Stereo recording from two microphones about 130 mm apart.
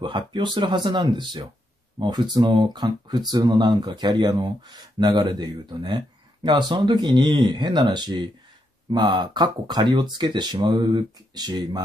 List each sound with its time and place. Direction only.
0.0 s speech: 35° right (ahead or behind)